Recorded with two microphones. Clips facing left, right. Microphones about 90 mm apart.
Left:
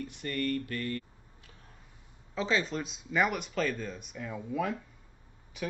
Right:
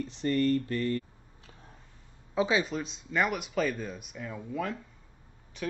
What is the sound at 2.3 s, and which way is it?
Speech, 15° right (ahead or behind).